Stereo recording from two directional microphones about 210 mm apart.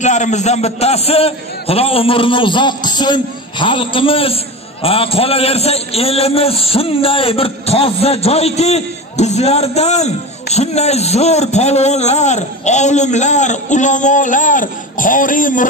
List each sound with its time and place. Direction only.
0.0 s a man's voice: 35° left (ahead or behind)